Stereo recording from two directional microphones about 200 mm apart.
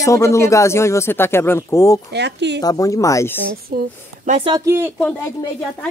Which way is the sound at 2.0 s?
60° right (ahead or behind).